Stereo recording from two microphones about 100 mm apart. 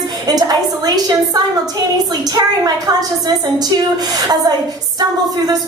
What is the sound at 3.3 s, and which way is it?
A woman's voice, 40° right (ahead or behind).